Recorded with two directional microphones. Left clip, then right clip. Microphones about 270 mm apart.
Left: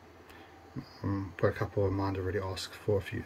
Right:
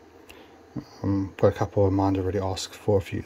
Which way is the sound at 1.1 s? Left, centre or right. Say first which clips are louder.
Right 9 dB; right.